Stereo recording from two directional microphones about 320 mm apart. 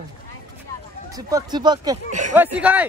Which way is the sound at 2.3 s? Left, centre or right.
Centre.